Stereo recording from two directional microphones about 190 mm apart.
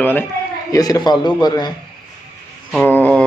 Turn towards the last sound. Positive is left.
turn(degrees=5)  # may be behind; listen again after turning